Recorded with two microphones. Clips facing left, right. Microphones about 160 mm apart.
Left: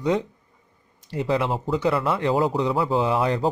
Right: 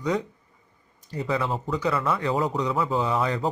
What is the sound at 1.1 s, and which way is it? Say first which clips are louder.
Speech: left 4 dB; 70° left (ahead or behind).